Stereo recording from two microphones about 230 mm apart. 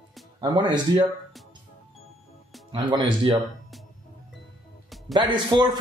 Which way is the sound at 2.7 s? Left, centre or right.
Centre.